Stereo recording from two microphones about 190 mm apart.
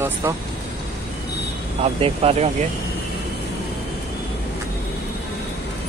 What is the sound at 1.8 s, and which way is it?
Speech, 30° right (ahead or behind).